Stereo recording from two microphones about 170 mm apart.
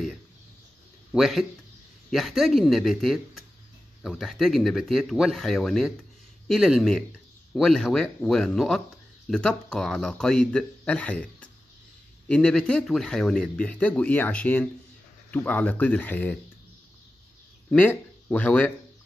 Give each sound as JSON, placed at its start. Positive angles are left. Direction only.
{"t": 1.1, "sound": "a man's voice", "side_deg": -5}
{"t": 17.6, "sound": "speech", "side_deg": 10}